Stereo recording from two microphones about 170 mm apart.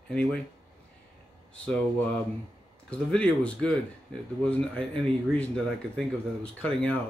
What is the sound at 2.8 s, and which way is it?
Speech, 5° left (ahead or behind).